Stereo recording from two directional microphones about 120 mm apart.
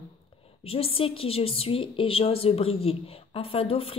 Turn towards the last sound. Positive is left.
turn(degrees=50)  # may be behind; listen again after turning